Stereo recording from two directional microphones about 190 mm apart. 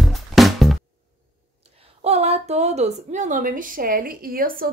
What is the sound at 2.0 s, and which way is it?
A woman's voice, 35° right (ahead or behind).